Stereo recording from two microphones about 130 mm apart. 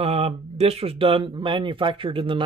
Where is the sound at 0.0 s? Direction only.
50° right (ahead or behind).